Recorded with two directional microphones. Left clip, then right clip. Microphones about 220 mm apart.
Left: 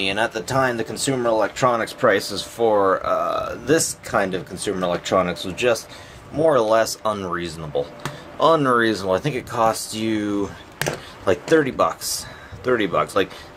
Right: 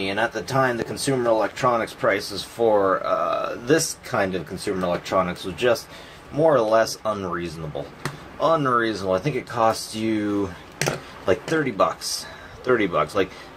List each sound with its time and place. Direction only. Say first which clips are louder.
0.0 s speech: left 2 dB; 45° left (ahead or behind)